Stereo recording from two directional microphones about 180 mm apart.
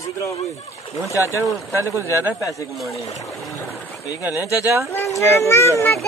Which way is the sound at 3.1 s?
15° left (ahead or behind).